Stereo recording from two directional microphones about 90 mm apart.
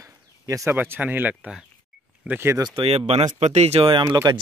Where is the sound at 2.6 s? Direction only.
80° right.